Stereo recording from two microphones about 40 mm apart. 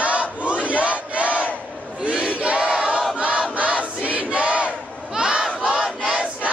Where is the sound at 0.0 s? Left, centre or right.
Right.